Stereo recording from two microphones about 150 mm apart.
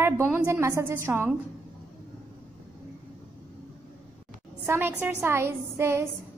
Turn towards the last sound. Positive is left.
turn(degrees=-15)  # may be behind; listen again after turning